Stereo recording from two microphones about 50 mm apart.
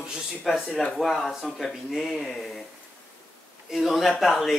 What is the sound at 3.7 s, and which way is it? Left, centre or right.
Speech, centre.